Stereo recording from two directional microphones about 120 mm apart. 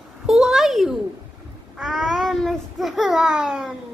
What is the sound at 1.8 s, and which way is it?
Babbling, centre (ahead or behind).